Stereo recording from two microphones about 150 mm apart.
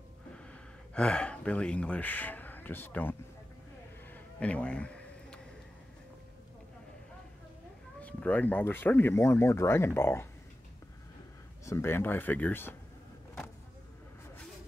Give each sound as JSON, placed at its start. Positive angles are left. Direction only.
{"t": 0.3, "sound": "speech", "side_deg": 5}
{"t": 4.1, "sound": "a sound", "side_deg": 10}
{"t": 8.0, "sound": "speech", "side_deg": 10}
{"t": 11.6, "sound": "speech", "side_deg": 20}